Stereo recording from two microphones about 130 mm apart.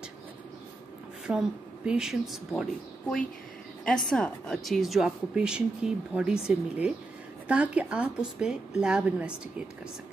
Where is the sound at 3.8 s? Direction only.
5° left (ahead or behind).